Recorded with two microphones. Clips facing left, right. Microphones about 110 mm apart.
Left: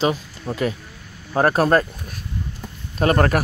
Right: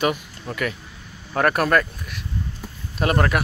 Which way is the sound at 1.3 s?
30° left (ahead or behind).